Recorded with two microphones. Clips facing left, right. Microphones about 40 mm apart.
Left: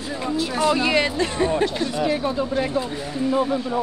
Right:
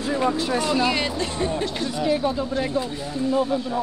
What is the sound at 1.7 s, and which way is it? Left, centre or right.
Speech, centre.